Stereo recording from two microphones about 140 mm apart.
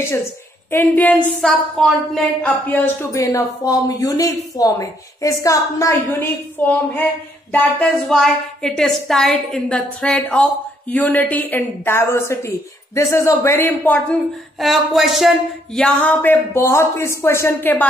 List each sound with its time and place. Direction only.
0.7 s a woman's voice: 15° left (ahead or behind)
14.6 s a woman's voice: centre (ahead or behind); by 17.8 s 15° left (ahead or behind)